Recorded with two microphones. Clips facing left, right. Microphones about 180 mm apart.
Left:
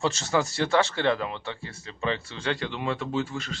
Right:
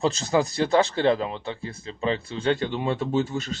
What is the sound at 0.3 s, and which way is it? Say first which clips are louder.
Speech: right 3 dB; 25° right (ahead or behind).